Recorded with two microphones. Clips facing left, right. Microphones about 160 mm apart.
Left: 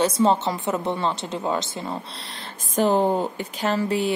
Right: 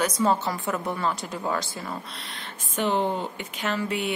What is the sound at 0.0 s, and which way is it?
A woman's voice, 25° left (ahead or behind).